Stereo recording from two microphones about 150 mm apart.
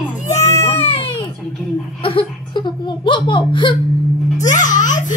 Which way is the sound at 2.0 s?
35° left (ahead or behind).